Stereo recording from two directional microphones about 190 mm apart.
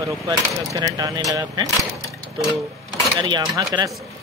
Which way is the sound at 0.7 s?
20° right (ahead or behind).